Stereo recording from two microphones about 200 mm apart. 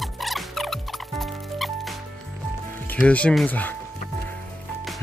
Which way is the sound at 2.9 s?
5° left (ahead or behind).